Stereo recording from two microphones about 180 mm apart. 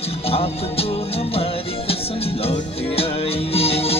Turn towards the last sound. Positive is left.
turn(degrees=35)  # may be behind; listen again after turning